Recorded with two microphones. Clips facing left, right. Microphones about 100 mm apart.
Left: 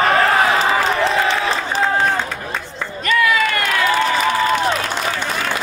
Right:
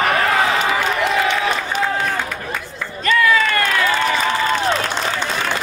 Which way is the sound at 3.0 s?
35° right (ahead or behind).